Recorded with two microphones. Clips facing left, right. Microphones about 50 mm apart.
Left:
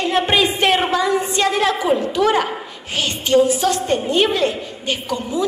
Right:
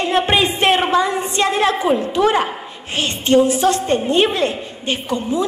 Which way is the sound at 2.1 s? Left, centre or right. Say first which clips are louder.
Right 1 dB; right.